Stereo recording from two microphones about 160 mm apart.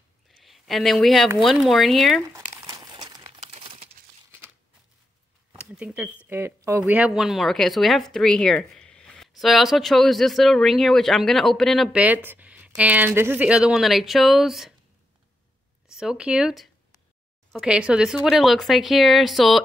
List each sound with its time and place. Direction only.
0.3 s speech: centre (ahead or behind)
2.3 s crumpling: 20° right (ahead or behind)
3.3 s crumpling: 40° right (ahead or behind)
5.6 s a sound: 5° right (ahead or behind)
6.2 s speech: 15° right (ahead or behind)
15.9 s speech: 5° right (ahead or behind)